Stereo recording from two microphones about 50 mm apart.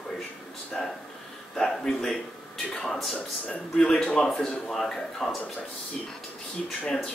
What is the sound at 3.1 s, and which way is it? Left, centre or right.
Speech, left.